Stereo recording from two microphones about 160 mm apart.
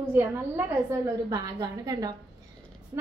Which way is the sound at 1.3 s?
25° right (ahead or behind).